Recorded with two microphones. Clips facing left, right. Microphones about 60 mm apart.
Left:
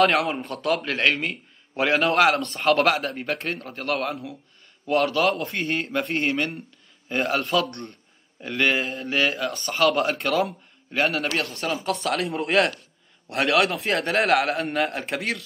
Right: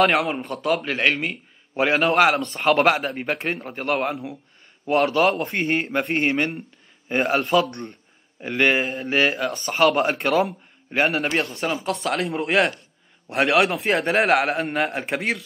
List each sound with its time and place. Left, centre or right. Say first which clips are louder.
0.0 s speech: right 1 dB; centre
5.0 s a man's voice: right 3 dB; right
5.9 s speech: right 2 dB; centre
6.1 s a man's voice: right 4 dB; right
7.4 s speech: right 4 dB; centre
8.4 s a man's voice: right 3 dB; right
8.8 s a man's voice: right 3 dB; centre